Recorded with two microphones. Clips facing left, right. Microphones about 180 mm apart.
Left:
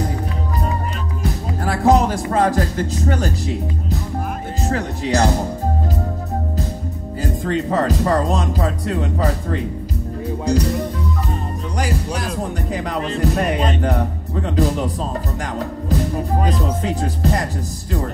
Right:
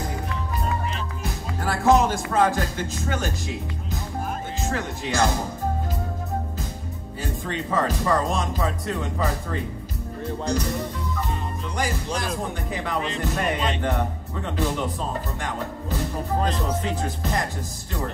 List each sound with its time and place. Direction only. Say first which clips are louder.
1.6 s speech: left 3 dB; 40° left (ahead or behind)
4.6 s speech: left 7 dB; 40° left (ahead or behind)
7.4 s speech: left 6 dB; 40° left (ahead or behind)
12.7 s speech: left 4 dB; 40° left (ahead or behind)